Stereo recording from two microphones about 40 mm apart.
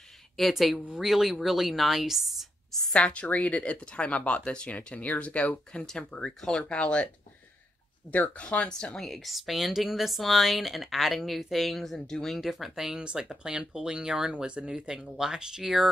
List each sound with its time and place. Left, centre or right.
0.4 s speech: centre
2.9 s speech: left
4.9 s speech: left
5.7 s speech: left
6.2 s speech: centre
6.7 s speech: left
8.1 s speech: left
8.6 s speech: centre
9.0 s speech: centre
12.4 s speech: centre
12.9 s speech: right